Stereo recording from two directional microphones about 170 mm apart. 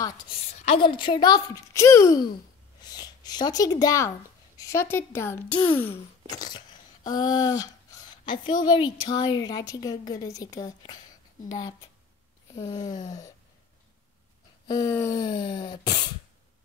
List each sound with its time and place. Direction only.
0.8 s a woman's voice: 30° left (ahead or behind); by 5.9 s 10° left (ahead or behind)
6.3 s a sound: 25° left (ahead or behind)
8.6 s a woman's voice: 25° left (ahead or behind)
12.5 s a woman's voice: 25° left (ahead or behind)
14.7 s a woman's voice: 20° left (ahead or behind)